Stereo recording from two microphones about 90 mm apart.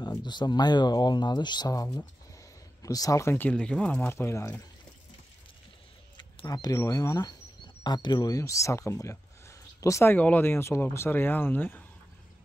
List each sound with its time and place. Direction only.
0.0 s speech: 55° left (ahead or behind); by 3.3 s 35° left (ahead or behind)
3.5 s speech: 10° left (ahead or behind)
4.0 s speech: 30° left (ahead or behind)
6.4 s speech: 45° left (ahead or behind)
7.8 s speech: 55° left (ahead or behind); by 10.1 s 35° left (ahead or behind)
10.1 s speech: 20° left (ahead or behind)